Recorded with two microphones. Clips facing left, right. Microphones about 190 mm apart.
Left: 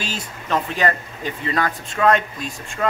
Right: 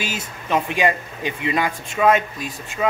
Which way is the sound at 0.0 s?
10° right (ahead or behind).